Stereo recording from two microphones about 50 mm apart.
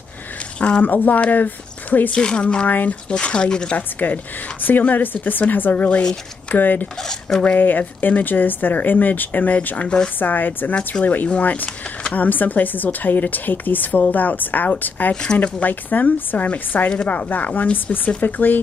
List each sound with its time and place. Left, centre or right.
0.6 s speech: left
0.8 s speech: left
2.1 s speech: centre
3.7 s speech: left
7.0 s speech: centre
7.5 s speech: left
9.8 s speech: centre
10.1 s speech: left